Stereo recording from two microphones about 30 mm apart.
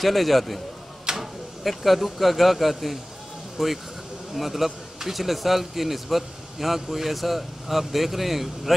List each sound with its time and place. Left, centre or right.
0.0 s speech: centre
1.1 s a sound: right
1.6 s speech: centre